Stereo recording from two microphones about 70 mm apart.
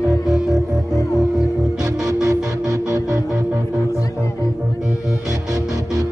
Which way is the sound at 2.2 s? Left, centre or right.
Right.